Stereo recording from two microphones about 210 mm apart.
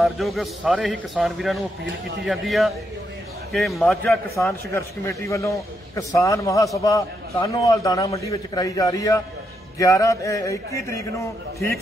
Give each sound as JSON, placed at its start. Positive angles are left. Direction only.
{"t": 0.0, "sound": "a man's voice", "side_deg": 0}
{"t": 4.4, "sound": "a man's voice", "side_deg": 15}